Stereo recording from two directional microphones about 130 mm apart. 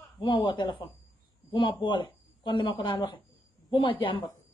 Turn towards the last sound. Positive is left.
turn(degrees=40)  # may be behind; listen again after turning